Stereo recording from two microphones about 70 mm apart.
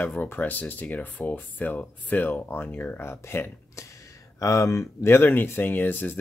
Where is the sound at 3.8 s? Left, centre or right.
Left.